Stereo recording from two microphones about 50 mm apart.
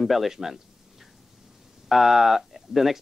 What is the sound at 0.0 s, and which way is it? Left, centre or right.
Speech, centre.